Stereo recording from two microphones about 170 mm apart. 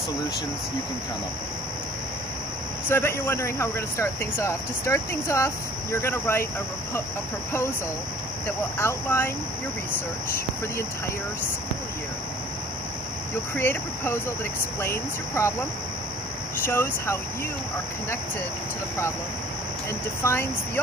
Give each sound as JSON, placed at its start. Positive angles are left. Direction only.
{"t": 2.9, "sound": "speech", "side_deg": 15}
{"t": 8.5, "sound": "speech", "side_deg": 15}
{"t": 13.6, "sound": "speech", "side_deg": 15}
{"t": 16.6, "sound": "speech", "side_deg": 15}
{"t": 20.2, "sound": "speech", "side_deg": 15}